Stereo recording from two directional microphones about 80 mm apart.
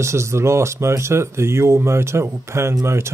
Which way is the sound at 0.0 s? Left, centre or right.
Right.